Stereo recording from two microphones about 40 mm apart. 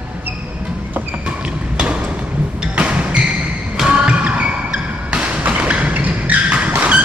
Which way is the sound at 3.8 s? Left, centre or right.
Right.